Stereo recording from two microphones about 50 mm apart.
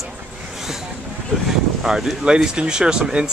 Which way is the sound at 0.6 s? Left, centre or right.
Centre.